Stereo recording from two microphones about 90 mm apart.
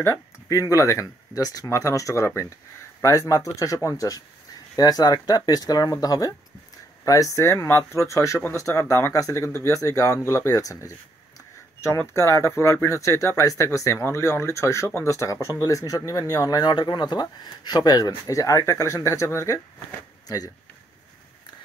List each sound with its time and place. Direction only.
0.0 s speech: 35° left (ahead or behind)
12.0 s speech: 30° left (ahead or behind)